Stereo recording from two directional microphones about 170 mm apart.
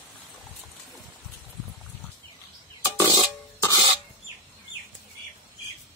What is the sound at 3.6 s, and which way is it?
Cough, 20° left (ahead or behind).